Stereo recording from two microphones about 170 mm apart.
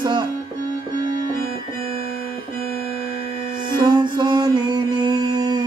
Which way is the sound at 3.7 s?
25° right (ahead or behind).